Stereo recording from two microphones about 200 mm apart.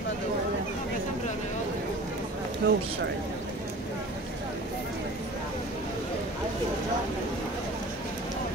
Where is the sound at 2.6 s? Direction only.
55° right (ahead or behind).